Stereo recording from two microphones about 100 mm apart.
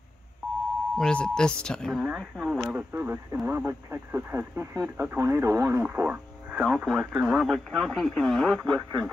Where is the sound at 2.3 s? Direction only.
5° right (ahead or behind).